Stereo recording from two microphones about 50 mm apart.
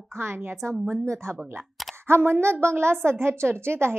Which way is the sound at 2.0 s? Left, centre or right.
Right.